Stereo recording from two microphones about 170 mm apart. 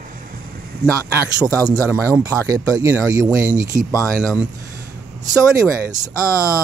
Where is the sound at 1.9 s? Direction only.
15° right (ahead or behind).